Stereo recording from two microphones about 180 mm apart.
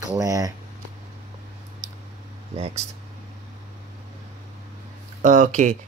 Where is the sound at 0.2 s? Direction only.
20° right (ahead or behind).